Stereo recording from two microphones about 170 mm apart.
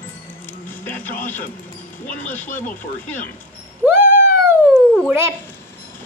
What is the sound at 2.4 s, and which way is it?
Speech, 50° left (ahead or behind).